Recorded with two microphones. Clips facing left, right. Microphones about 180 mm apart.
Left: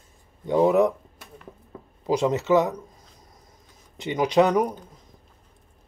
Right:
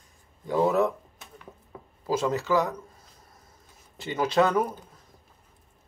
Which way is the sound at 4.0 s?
15° left (ahead or behind).